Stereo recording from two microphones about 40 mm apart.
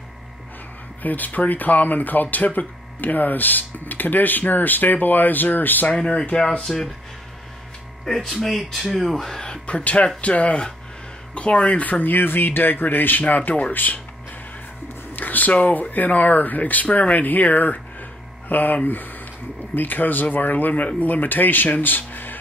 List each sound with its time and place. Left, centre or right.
1.0 s speech: left
5.9 s speech: left
6.6 s speech: centre
8.0 s speech: centre
9.4 s speech: left
15.1 s speech: left